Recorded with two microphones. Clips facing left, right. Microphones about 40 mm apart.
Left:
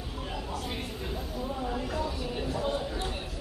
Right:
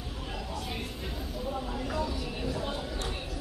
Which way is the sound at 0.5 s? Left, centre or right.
Left.